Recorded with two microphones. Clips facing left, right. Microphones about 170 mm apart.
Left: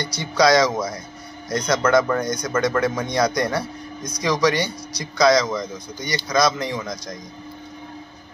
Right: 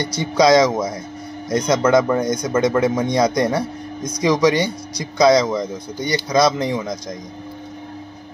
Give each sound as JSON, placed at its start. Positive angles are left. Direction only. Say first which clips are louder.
{"t": 0.2, "sound": "speech", "louder": "right 3 dB", "side_deg": -20}